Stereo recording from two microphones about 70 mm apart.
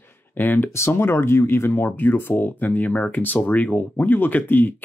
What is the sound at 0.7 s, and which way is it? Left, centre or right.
Speech, left.